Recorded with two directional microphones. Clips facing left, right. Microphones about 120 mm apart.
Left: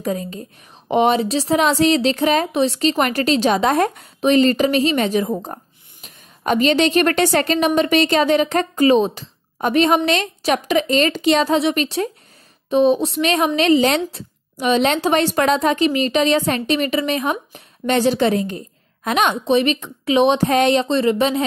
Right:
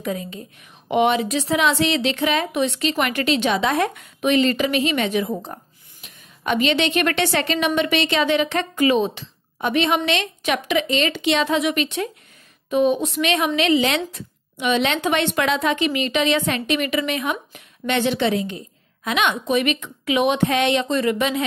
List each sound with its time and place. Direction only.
0.0 s a woman's voice: 40° left (ahead or behind)